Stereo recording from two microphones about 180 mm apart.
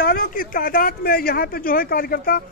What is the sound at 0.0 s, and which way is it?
Speech, 55° left (ahead or behind).